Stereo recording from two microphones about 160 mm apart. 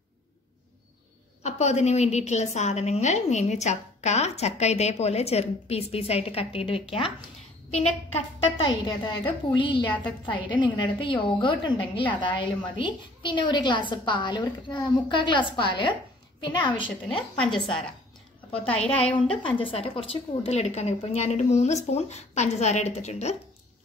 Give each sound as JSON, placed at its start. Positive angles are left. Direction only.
{"t": 1.4, "sound": "a woman's voice", "side_deg": 45}
{"t": 8.5, "sound": "a woman's voice", "side_deg": 30}
{"t": 18.9, "sound": "a woman's voice", "side_deg": 10}
{"t": 19.1, "sound": "a woman's voice", "side_deg": 30}